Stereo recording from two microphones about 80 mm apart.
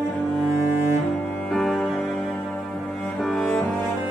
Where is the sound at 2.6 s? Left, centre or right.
Centre.